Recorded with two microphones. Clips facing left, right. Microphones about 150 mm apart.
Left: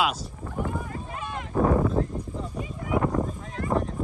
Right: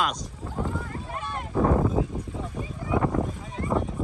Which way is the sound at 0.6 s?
15° left (ahead or behind).